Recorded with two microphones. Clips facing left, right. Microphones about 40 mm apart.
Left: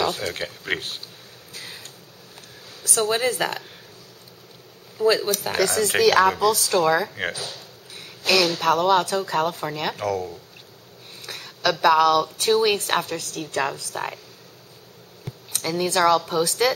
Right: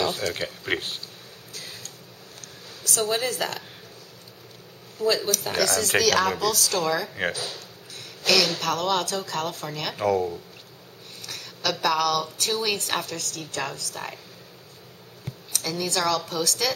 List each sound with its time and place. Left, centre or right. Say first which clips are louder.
0.3 s speech: even; centre
1.5 s a sound: left 2 dB; centre
2.8 s speech: left 3 dB; centre
4.9 s speech: left 4 dB; centre
7.1 s speech: even; centre
7.9 s a sound: left 1 dB; centre
8.6 s speech: left 6 dB; centre
9.9 s speech: right 3 dB; centre
11.1 s a sound: left 2 dB; centre
11.8 s a woman's voice: left 7 dB; centre
15.5 s a woman's voice: left 5 dB; left